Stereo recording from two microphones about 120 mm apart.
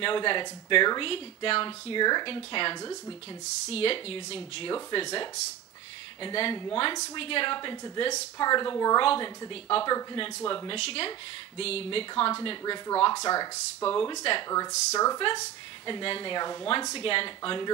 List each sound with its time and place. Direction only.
0.0 s speech: 45° left (ahead or behind)
2.8 s a woman's voice: 30° left (ahead or behind)
3.6 s a woman's voice: 55° left (ahead or behind); by 9.0 s 35° left (ahead or behind)
9.0 s speech: 50° left (ahead or behind)
10.8 s a woman's voice: 55° left (ahead or behind); by 13.8 s 30° left (ahead or behind)
13.8 s speech: 45° left (ahead or behind)
14.5 s speech: 25° left (ahead or behind)
15.9 s a woman's voice: 45° left (ahead or behind)